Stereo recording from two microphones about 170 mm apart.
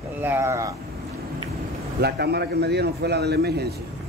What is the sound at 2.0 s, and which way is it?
A man's voice, 75° right (ahead or behind).